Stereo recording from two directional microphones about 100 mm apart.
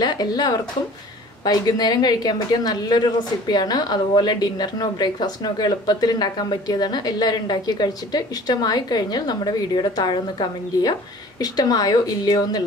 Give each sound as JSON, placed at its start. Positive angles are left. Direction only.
{"t": 0.0, "sound": "a woman's voice", "side_deg": 45}